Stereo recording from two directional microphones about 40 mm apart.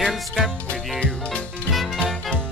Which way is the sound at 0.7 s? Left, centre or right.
Left.